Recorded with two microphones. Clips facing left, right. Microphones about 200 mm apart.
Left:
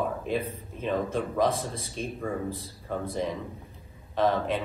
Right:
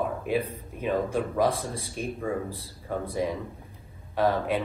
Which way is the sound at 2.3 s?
Centre (ahead or behind).